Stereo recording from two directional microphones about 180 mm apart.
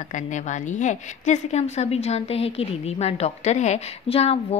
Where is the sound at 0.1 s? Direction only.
40° left (ahead or behind).